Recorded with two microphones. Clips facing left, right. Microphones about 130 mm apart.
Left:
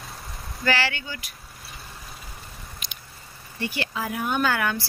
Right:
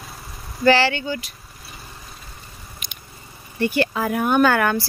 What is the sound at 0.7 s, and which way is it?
Speech, 30° right (ahead or behind).